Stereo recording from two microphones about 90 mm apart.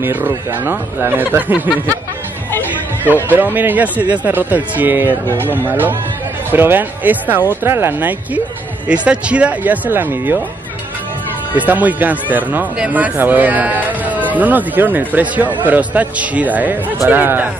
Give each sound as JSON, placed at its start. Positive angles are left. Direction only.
{"t": 0.0, "sound": "speech", "side_deg": -25}
{"t": 2.7, "sound": "a sound", "side_deg": -20}
{"t": 3.5, "sound": "speech", "side_deg": -20}
{"t": 8.8, "sound": "speech", "side_deg": -15}
{"t": 11.5, "sound": "speech", "side_deg": -20}